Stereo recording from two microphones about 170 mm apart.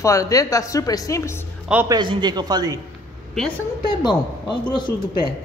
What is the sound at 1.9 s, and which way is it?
Speech, 25° right (ahead or behind).